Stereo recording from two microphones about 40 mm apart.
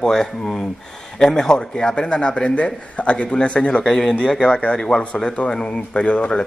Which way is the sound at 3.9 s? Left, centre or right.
Centre.